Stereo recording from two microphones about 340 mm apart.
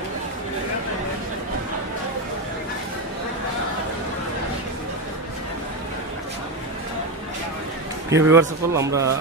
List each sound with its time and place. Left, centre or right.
8.1 s a man's voice: centre